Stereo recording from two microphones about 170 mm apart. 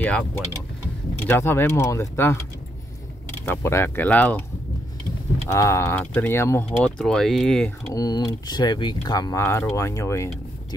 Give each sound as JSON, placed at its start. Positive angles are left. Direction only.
{"t": 0.0, "sound": "speech", "side_deg": 10}
{"t": 3.4, "sound": "speech", "side_deg": 15}
{"t": 5.5, "sound": "speech", "side_deg": 15}
{"t": 7.0, "sound": "speech", "side_deg": 5}
{"t": 7.9, "sound": "speech", "side_deg": 25}